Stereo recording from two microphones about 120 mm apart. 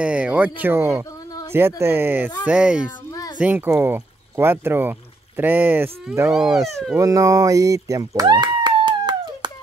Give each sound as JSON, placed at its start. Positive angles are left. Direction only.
{"t": 0.0, "sound": "speech", "side_deg": -10}
{"t": 3.1, "sound": "children playing", "side_deg": 30}
{"t": 3.3, "sound": "speech", "side_deg": -15}